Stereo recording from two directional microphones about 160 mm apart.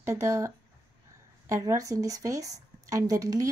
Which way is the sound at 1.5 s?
20° right (ahead or behind).